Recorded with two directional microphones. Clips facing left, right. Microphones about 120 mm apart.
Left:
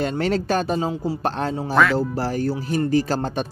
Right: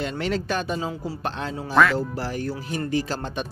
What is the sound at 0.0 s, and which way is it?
Speech, 40° left (ahead or behind).